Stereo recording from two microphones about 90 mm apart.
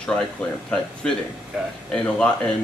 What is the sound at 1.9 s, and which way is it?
Speech, 10° left (ahead or behind).